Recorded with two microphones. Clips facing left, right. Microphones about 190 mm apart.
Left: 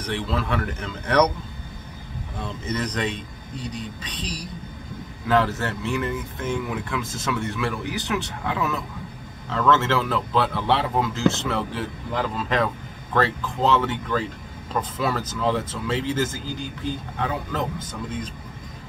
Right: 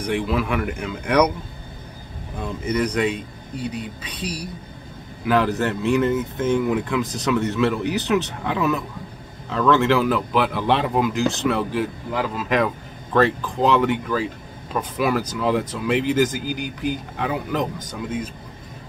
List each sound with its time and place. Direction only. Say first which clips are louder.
0.0 s speech: right 4 dB; 10° right (ahead or behind)
2.4 s speech: right 6 dB; 10° right (ahead or behind)